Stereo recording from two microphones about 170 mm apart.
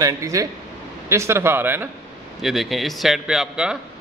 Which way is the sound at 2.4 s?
Centre (ahead or behind).